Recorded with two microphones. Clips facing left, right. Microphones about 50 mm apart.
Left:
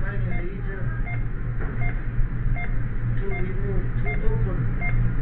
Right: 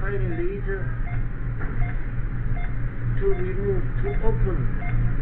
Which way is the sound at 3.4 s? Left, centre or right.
Centre.